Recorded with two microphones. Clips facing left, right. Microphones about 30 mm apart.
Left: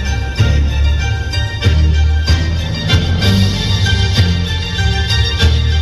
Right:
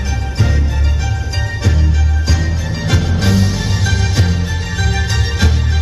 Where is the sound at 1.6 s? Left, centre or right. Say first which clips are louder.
Left 1 dB; left.